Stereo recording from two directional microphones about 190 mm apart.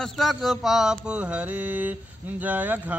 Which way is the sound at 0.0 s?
Centre (ahead or behind).